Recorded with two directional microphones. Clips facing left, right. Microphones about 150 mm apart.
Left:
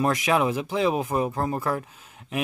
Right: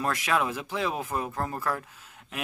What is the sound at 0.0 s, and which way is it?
Speech, 15° left (ahead or behind).